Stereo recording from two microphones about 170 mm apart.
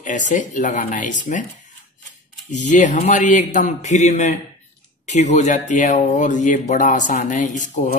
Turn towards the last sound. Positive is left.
turn(degrees=45)  # may be behind; listen again after turning